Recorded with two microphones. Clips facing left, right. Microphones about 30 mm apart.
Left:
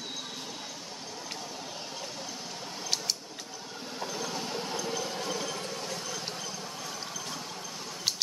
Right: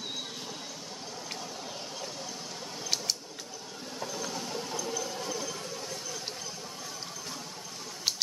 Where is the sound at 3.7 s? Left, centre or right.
Centre; by 5.5 s left.